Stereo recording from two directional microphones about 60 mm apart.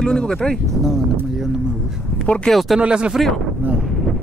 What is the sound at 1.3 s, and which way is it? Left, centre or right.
Speech, centre.